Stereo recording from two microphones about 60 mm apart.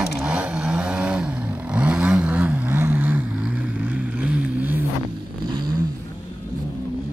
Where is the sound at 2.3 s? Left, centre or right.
Right.